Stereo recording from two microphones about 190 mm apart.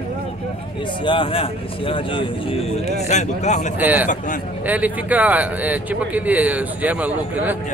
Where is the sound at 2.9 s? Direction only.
35° left (ahead or behind).